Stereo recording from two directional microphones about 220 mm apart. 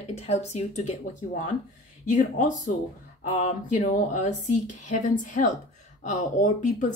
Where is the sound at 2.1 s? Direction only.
35° left (ahead or behind).